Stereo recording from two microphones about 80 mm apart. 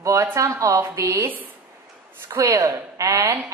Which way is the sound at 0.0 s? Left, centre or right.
Right.